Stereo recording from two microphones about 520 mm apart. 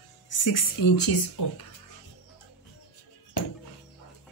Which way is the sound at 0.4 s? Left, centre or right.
Left.